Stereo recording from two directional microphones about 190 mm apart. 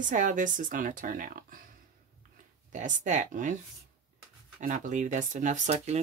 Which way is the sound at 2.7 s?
40° right (ahead or behind).